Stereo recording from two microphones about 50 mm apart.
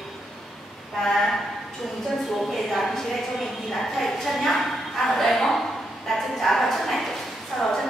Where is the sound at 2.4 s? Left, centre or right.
Centre.